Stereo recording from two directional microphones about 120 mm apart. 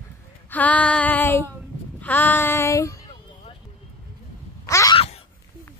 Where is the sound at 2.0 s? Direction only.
15° left (ahead or behind).